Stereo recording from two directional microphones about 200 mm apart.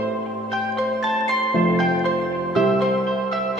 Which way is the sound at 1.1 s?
Centre (ahead or behind).